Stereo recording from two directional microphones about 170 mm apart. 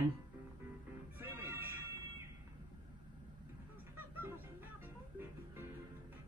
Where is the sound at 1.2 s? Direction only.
15° right (ahead or behind).